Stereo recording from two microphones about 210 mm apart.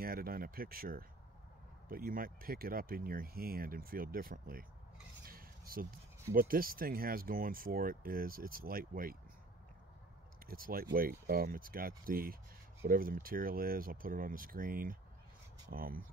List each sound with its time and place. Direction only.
0.0 s speech: 45° right (ahead or behind)
10.4 s speech: 45° right (ahead or behind)